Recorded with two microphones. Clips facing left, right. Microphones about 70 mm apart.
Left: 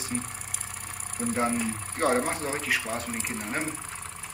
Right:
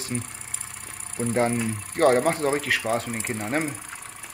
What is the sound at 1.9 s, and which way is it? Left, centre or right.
Speech, right.